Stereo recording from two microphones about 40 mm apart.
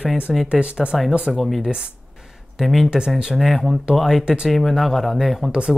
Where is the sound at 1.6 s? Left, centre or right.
Right.